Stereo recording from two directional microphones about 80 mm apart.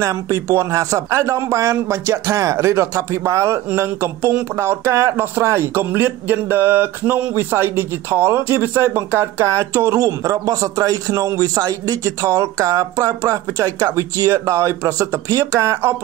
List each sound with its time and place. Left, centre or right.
0.0 s a man's voice: right